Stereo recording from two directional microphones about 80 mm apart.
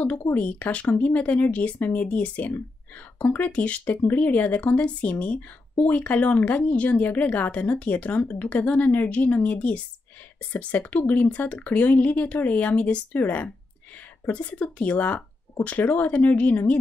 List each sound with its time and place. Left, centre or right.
0.3 s speech: centre